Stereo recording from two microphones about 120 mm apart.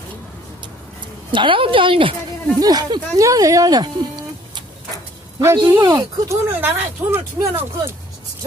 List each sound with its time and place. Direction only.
1.3 s a woman's voice: 45° right (ahead or behind)
2.6 s speech: 35° right (ahead or behind)
5.7 s speech: 25° right (ahead or behind)